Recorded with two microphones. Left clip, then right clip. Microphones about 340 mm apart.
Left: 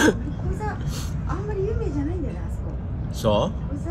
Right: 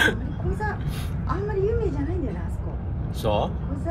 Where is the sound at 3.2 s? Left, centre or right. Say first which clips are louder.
Left 3 dB; left.